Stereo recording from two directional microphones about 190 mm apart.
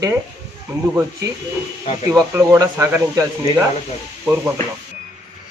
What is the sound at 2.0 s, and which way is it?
Speech, 15° right (ahead or behind).